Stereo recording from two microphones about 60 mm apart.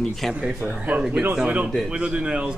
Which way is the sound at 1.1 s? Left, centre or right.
Right.